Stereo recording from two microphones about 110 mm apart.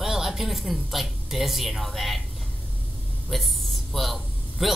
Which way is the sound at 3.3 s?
Centre (ahead or behind).